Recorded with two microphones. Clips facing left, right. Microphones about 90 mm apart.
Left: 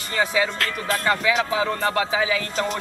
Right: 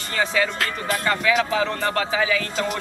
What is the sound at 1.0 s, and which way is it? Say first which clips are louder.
Speech: right 1 dB; 15° left (ahead or behind).